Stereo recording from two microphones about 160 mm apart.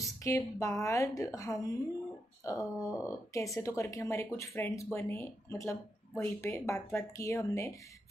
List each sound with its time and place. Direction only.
0.0 s speech: 20° left (ahead or behind)